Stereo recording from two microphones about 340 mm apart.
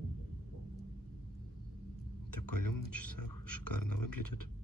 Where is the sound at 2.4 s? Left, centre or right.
Left.